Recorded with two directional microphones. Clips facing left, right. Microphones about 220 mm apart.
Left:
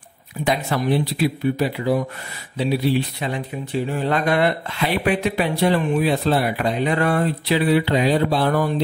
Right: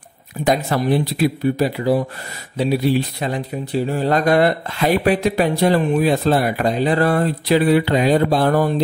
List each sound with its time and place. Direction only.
0.4 s speech: 45° right (ahead or behind)